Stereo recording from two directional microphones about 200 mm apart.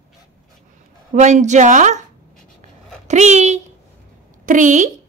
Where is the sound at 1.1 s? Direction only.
35° right (ahead or behind).